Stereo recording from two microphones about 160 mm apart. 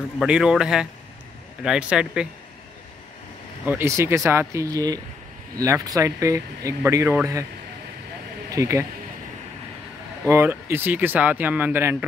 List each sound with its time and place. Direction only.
0.2 s speech: 5° right (ahead or behind)
3.6 s speech: 15° right (ahead or behind)
8.5 s speech: 20° right (ahead or behind)
10.2 s speech: 15° right (ahead or behind)